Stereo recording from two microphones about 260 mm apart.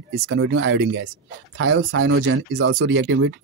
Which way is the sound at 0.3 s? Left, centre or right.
Right.